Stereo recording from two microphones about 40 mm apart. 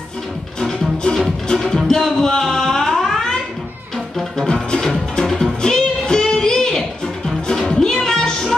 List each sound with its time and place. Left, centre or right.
0.6 s music: centre
4.5 s music: centre